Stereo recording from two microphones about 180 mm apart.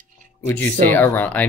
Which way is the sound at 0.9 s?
10° left (ahead or behind).